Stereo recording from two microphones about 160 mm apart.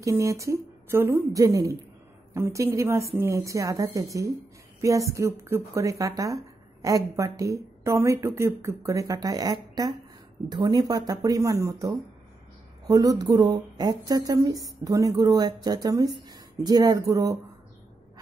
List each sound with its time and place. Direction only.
0.0 s a woman's voice: 20° right (ahead or behind)